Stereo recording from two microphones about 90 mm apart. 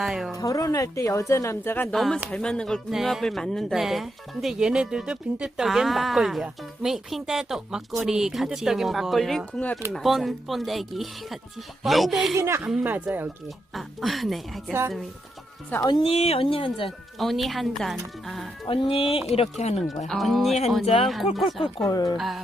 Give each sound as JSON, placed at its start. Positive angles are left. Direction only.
{"t": 0.0, "sound": "speech", "side_deg": -5}
{"t": 0.4, "sound": "a woman's voice", "side_deg": 40}
{"t": 1.9, "sound": "speech", "side_deg": 5}
{"t": 9.5, "sound": "speech", "side_deg": 15}
{"t": 9.9, "sound": "speech", "side_deg": 0}
{"t": 12.4, "sound": "speech", "side_deg": -35}
{"t": 12.8, "sound": "speech", "side_deg": -20}
{"t": 13.7, "sound": "speech", "side_deg": 0}
{"t": 15.9, "sound": "speech", "side_deg": 90}
{"t": 17.2, "sound": "speech", "side_deg": 0}
{"t": 18.7, "sound": "speech", "side_deg": 90}
{"t": 19.5, "sound": "speech", "side_deg": 5}
{"t": 21.8, "sound": "a woman's voice", "side_deg": 40}
{"t": 22.1, "sound": "speech", "side_deg": 0}